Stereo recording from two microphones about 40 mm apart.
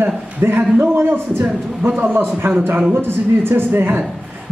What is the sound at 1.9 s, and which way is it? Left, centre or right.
Speech, right.